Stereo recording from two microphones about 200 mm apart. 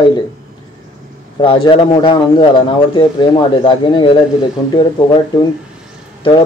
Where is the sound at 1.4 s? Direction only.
25° left (ahead or behind).